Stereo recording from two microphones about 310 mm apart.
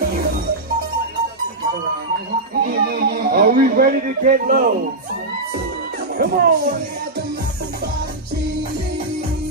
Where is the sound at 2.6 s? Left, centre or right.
Right.